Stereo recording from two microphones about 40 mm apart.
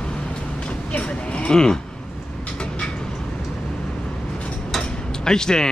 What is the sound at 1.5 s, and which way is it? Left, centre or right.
Speech, centre.